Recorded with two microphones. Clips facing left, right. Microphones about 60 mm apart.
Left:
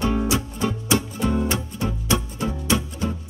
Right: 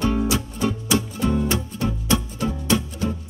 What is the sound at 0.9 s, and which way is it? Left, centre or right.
Music, left.